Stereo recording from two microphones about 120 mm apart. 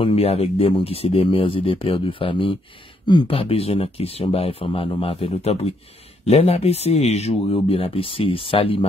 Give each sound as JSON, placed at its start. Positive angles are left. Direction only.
{"t": 0.0, "sound": "speech", "side_deg": 55}